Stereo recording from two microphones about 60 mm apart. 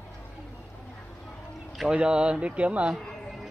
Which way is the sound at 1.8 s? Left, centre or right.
Centre.